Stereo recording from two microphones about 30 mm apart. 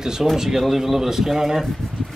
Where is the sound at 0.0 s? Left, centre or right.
Right.